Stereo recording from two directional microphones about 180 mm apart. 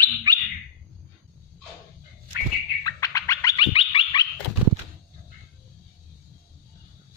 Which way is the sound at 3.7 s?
30° left (ahead or behind).